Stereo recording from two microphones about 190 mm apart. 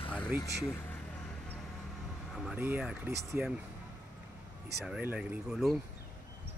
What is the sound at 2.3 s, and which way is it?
Speech, 5° right (ahead or behind).